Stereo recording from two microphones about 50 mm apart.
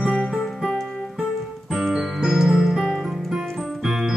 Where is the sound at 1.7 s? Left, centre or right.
Centre.